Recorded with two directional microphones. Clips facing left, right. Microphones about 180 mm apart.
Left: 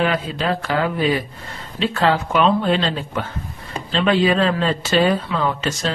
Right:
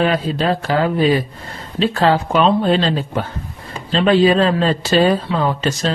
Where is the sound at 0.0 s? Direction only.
35° right (ahead or behind).